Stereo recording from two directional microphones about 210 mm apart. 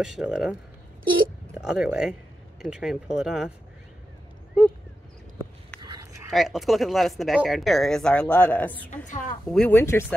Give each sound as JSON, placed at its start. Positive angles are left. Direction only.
{"t": 0.0, "sound": "speech", "side_deg": 0}
{"t": 5.8, "sound": "a sound", "side_deg": -20}
{"t": 6.3, "sound": "speech", "side_deg": 0}
{"t": 8.9, "sound": "a woman's voice", "side_deg": 35}
{"t": 9.5, "sound": "speech", "side_deg": 5}